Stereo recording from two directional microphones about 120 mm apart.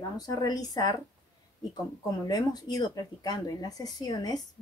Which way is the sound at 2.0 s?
35° left (ahead or behind).